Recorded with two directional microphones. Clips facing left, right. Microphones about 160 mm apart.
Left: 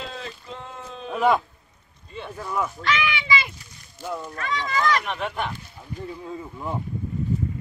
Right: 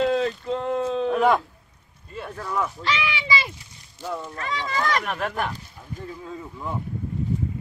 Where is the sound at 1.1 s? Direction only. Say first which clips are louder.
Even; centre (ahead or behind).